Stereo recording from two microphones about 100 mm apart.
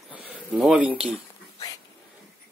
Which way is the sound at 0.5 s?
10° right (ahead or behind).